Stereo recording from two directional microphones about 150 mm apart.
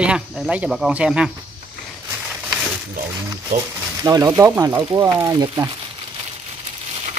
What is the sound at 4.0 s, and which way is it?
Speech, 25° right (ahead or behind).